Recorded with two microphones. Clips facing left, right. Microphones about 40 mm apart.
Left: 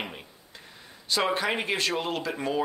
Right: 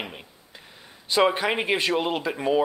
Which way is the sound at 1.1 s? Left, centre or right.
Centre.